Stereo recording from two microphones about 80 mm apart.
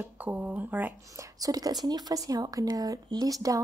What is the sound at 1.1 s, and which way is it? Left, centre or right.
Speech, right.